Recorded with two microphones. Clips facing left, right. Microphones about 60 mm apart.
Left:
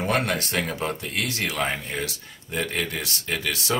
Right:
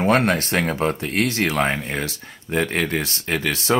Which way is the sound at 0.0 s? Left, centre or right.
Right.